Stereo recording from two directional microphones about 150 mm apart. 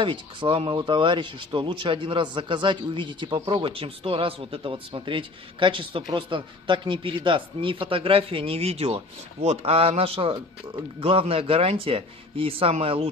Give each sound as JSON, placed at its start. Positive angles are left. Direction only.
{"t": 0.0, "sound": "speech", "side_deg": -35}